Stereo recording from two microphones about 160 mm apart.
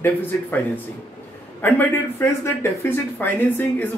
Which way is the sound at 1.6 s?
15° left (ahead or behind).